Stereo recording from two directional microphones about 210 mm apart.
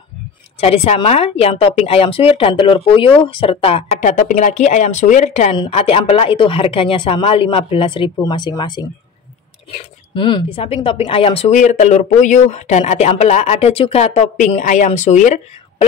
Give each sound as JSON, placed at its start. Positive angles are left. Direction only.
{"t": 0.6, "sound": "a woman's voice", "side_deg": 30}
{"t": 10.1, "sound": "speech", "side_deg": 25}